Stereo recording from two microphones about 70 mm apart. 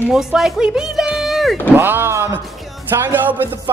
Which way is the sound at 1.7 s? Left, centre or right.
Right.